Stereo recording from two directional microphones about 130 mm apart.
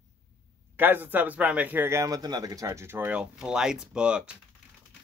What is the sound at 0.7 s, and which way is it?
Speech, 15° right (ahead or behind).